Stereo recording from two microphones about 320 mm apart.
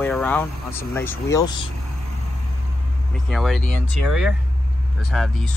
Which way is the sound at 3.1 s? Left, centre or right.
Centre.